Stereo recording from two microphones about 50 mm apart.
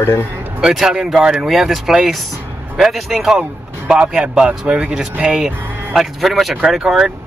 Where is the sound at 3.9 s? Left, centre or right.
Right.